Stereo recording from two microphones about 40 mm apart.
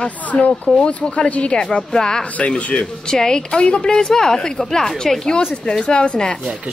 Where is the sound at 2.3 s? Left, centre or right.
Left.